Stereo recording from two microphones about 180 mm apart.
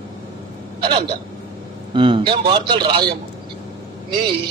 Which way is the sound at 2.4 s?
25° right (ahead or behind).